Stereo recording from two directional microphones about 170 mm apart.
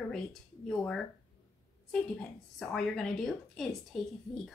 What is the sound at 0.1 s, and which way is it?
Speech, 5° left (ahead or behind).